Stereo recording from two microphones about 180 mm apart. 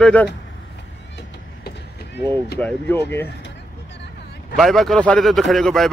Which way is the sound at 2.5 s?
10° left (ahead or behind).